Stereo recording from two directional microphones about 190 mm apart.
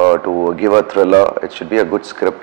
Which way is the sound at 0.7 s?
20° right (ahead or behind).